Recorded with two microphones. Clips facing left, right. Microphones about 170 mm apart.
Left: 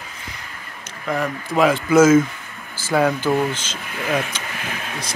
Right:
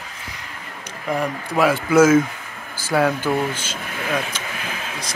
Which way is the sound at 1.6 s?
10° right (ahead or behind).